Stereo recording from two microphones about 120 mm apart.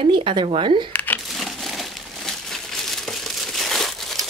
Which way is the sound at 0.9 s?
15° left (ahead or behind).